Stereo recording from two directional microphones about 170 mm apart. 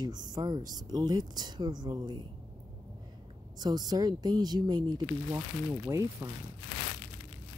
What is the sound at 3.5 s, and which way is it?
Speech, 25° right (ahead or behind).